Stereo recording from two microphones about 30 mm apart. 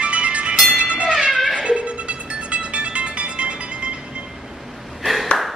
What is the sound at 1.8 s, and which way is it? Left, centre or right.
Music, right.